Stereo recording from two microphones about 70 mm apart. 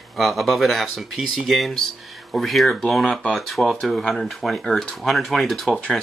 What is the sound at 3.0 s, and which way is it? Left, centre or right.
Speech, centre.